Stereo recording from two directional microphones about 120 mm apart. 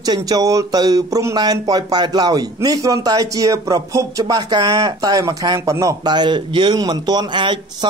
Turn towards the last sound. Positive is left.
turn(degrees=-40)  # may be behind; listen again after turning